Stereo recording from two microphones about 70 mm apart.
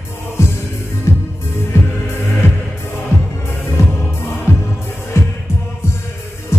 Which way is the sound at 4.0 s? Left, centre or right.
Left.